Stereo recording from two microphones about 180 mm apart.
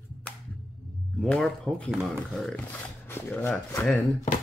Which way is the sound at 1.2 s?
Centre (ahead or behind).